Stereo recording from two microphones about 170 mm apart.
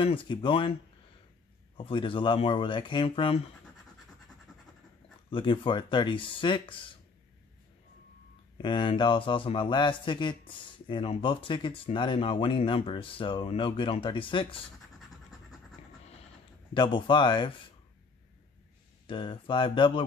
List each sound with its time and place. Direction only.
0.0 s speech: 30° left (ahead or behind)
1.8 s a man's voice: 30° left (ahead or behind)
5.3 s a man's voice: 30° left (ahead or behind)
8.5 s a man's voice: 30° left (ahead or behind)
16.7 s a man's voice: 25° left (ahead or behind)
19.0 s a man's voice: 30° left (ahead or behind)